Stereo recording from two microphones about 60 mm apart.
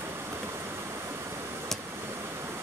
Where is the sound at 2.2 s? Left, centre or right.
Right.